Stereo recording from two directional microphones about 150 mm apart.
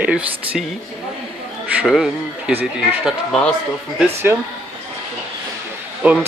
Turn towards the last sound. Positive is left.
turn(degrees=-10)  # may be behind; listen again after turning